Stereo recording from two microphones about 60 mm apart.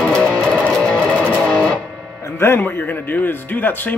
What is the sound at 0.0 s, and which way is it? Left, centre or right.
Music, centre.